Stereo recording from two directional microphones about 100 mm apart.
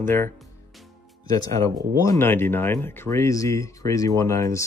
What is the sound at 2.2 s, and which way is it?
Speech, 20° left (ahead or behind).